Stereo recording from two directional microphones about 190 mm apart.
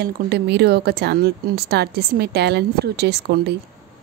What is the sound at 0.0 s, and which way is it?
A woman's voice, 60° right (ahead or behind).